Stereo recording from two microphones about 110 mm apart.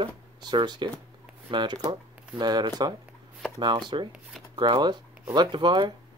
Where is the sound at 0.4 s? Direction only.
40° right (ahead or behind).